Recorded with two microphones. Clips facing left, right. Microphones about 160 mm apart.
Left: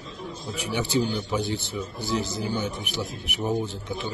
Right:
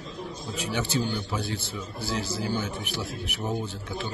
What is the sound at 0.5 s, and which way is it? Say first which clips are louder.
A man's voice: left 3 dB; 15° left (ahead or behind).